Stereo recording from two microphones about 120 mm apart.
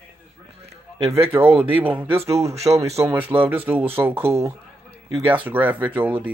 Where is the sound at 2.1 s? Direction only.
60° right (ahead or behind).